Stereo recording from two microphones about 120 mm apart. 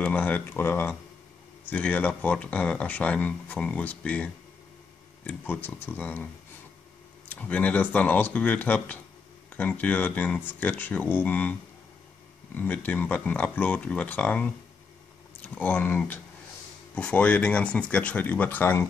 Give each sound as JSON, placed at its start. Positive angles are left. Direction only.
{"t": 0.0, "sound": "speech", "side_deg": 15}
{"t": 7.2, "sound": "speech", "side_deg": 15}
{"t": 12.5, "sound": "speech", "side_deg": 15}